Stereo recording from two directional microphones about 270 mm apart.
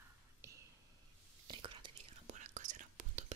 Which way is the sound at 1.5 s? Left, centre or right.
Centre.